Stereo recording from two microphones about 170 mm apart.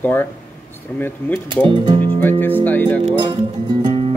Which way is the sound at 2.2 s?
10° left (ahead or behind).